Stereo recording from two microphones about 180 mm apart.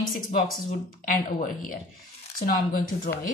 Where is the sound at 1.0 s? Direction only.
50° left (ahead or behind).